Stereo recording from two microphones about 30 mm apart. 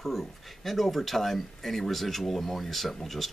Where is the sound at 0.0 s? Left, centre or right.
Centre.